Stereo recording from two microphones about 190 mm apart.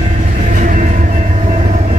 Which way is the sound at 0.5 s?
45° right (ahead or behind).